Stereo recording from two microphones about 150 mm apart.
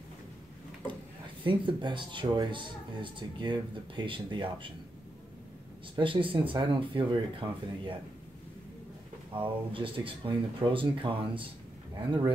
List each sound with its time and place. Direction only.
1.4 s speech: 35° right (ahead or behind)
5.9 s speech: 35° right (ahead or behind)
9.3 s speech: 35° right (ahead or behind)